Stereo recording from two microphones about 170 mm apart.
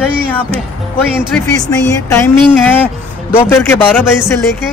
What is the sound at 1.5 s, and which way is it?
Speech, 15° left (ahead or behind).